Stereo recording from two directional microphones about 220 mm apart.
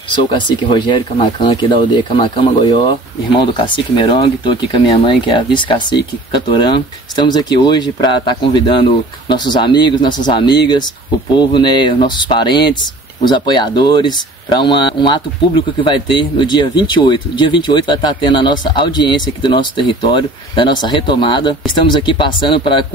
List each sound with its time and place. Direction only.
0.1 s speech: 20° left (ahead or behind)